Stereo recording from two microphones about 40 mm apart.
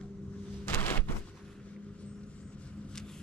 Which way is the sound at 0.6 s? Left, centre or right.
Left.